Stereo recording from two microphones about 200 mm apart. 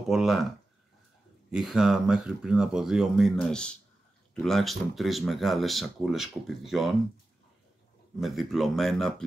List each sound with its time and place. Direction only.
0.1 s speech: centre (ahead or behind)
1.5 s speech: centre (ahead or behind)
8.2 s speech: centre (ahead or behind)